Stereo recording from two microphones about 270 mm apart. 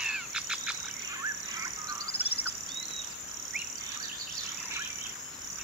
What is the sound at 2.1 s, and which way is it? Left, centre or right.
Bird, left.